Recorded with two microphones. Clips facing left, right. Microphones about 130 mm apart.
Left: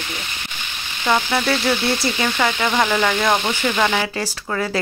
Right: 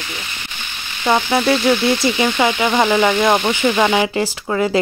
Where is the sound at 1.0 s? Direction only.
20° right (ahead or behind).